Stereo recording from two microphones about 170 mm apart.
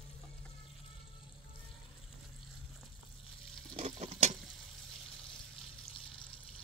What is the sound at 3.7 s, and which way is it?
Stir, 40° right (ahead or behind).